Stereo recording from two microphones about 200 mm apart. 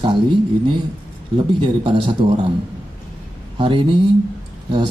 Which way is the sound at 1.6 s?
25° right (ahead or behind).